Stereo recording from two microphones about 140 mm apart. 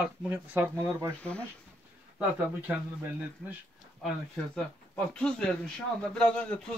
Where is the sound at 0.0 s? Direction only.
10° right (ahead or behind).